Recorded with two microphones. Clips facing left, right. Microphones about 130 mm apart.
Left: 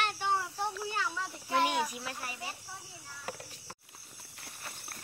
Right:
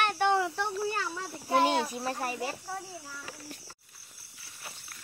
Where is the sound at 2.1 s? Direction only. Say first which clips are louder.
Right 9 dB; 50° right (ahead or behind).